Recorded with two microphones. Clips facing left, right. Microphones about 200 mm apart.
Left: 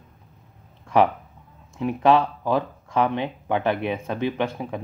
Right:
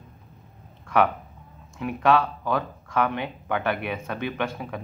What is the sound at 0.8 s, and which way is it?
Speech, 25° left (ahead or behind).